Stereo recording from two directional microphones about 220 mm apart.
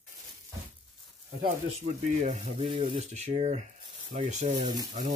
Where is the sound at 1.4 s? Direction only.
35° right (ahead or behind).